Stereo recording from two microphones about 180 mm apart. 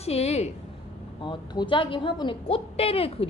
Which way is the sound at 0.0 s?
35° left (ahead or behind).